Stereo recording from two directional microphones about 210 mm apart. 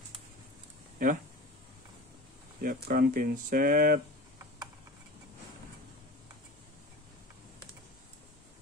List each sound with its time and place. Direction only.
1.0 s speech: 40° right (ahead or behind)
2.6 s speech: 40° right (ahead or behind)